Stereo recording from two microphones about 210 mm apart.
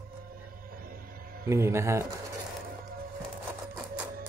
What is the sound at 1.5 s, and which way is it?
Speech, 10° right (ahead or behind).